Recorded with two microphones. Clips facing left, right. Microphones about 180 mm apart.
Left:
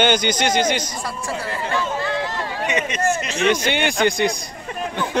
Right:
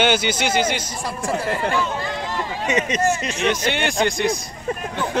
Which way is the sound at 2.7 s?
35° right (ahead or behind).